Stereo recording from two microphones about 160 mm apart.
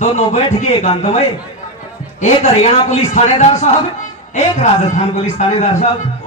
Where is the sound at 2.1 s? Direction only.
45° left (ahead or behind).